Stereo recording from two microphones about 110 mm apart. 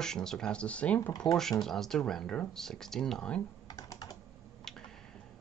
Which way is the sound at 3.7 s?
35° left (ahead or behind).